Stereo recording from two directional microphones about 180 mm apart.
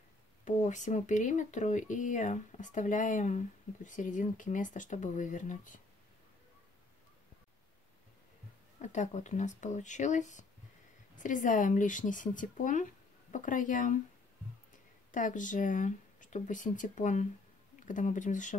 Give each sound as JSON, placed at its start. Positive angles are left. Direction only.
{"t": 0.5, "sound": "speech", "side_deg": 45}
{"t": 8.8, "sound": "speech", "side_deg": 40}
{"t": 15.0, "sound": "speech", "side_deg": 45}